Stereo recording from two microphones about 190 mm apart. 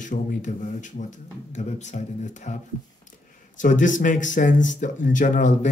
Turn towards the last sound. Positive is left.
turn(degrees=40)  # may be behind; listen again after turning